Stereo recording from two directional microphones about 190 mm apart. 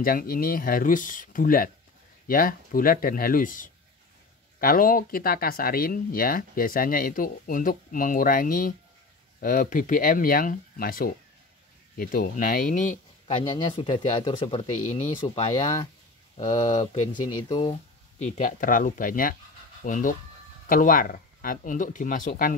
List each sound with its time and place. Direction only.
0.0 s speech: 50° left (ahead or behind)
13.4 s speech: 30° left (ahead or behind)
18.2 s speech: 45° left (ahead or behind)